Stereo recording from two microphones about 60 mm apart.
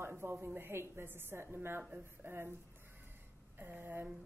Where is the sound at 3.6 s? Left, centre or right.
Right.